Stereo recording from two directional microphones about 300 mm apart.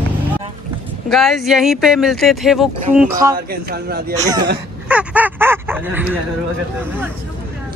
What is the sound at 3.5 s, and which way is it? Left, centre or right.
Speech, right.